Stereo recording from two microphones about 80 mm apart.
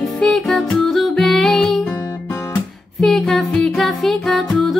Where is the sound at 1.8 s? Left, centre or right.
Left.